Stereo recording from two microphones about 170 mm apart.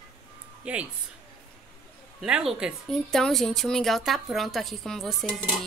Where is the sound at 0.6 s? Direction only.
10° right (ahead or behind).